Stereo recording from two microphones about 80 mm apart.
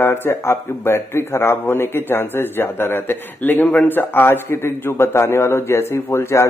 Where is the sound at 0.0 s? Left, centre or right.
Left.